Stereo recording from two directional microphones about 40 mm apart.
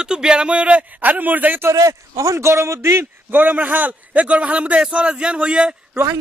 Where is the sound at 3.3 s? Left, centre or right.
Right.